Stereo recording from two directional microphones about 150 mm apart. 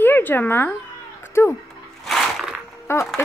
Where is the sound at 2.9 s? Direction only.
15° left (ahead or behind).